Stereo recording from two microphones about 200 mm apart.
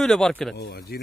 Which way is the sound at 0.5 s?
50° left (ahead or behind).